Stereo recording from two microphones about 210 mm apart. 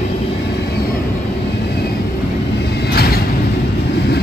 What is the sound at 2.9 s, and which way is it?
Mechanisms, 50° left (ahead or behind).